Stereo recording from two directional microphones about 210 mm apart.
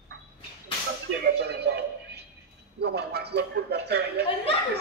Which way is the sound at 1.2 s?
50° right (ahead or behind).